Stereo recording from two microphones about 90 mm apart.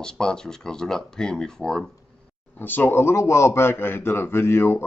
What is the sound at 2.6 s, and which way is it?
A man's voice, 20° left (ahead or behind).